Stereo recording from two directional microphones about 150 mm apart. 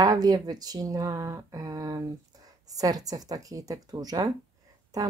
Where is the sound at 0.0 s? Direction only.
25° right (ahead or behind).